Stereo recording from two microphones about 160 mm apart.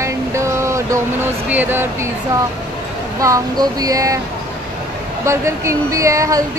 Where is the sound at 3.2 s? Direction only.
20° right (ahead or behind).